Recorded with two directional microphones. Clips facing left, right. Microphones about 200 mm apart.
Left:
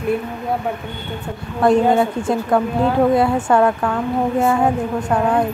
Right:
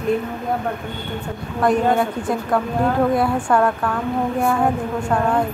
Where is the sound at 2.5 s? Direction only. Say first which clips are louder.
Left 4 dB; 25° left (ahead or behind).